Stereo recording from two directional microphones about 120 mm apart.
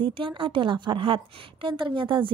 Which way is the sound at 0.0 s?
45° right (ahead or behind).